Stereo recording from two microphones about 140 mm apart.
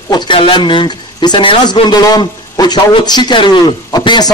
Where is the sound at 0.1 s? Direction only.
35° left (ahead or behind).